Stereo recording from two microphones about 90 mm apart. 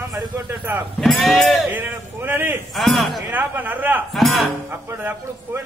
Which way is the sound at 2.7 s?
Centre (ahead or behind).